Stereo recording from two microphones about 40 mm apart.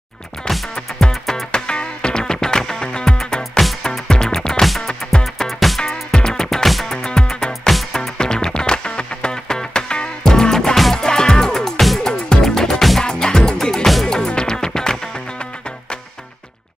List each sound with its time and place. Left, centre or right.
0.5 s music: centre
1.5 s music: left
5.2 s music: centre
5.8 s music: centre